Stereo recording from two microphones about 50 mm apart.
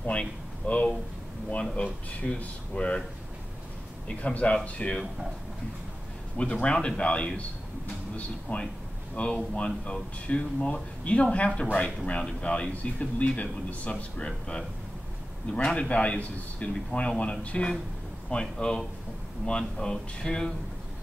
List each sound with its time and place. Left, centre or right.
0.0 s speech: left
4.1 s speech: left
6.3 s speech: left
8.5 s speech: left